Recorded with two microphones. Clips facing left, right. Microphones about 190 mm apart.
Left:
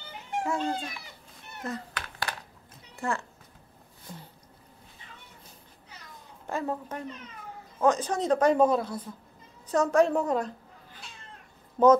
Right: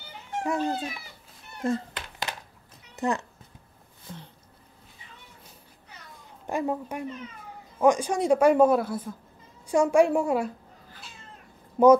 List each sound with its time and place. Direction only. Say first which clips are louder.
0.4 s speech: right 2 dB; 15° right (ahead or behind)
1.6 s cat: right 8 dB; 25° right (ahead or behind)
3.0 s speech: right 4 dB; 20° right (ahead or behind)
4.1 s a sound: right 2 dB; centre (ahead or behind)
6.4 s speech: right 3 dB; 15° right (ahead or behind)
11.8 s speech: right 3 dB; 10° right (ahead or behind)